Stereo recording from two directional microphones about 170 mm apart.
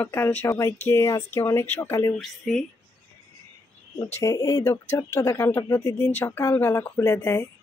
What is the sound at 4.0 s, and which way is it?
Speech, 15° left (ahead or behind).